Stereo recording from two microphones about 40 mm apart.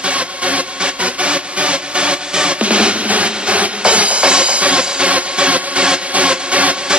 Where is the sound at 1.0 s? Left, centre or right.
Right.